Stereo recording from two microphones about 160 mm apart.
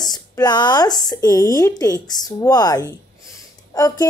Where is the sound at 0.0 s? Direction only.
25° left (ahead or behind).